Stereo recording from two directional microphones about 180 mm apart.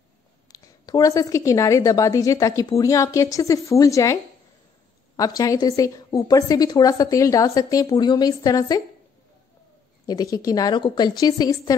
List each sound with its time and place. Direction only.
0.5 s a woman's voice: 20° left (ahead or behind)
10.0 s a woman's voice: 20° left (ahead or behind)